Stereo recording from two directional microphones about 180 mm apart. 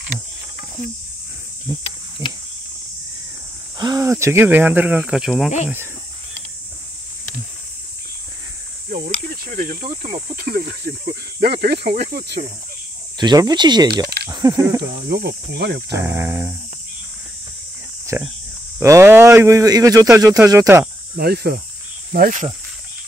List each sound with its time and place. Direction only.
2.2 s speech: 15° right (ahead or behind)
3.8 s speech: 20° right (ahead or behind); by 5.5 s 5° right (ahead or behind)
9.5 s speech: 50° right (ahead or behind)
13.2 s speech: 20° right (ahead or behind)
15.0 s speech: 60° right (ahead or behind)
16.0 s speech: 15° right (ahead or behind)
18.1 s speech: 15° right (ahead or behind)
21.2 s speech: 60° right (ahead or behind)
22.1 s speech: 50° right (ahead or behind)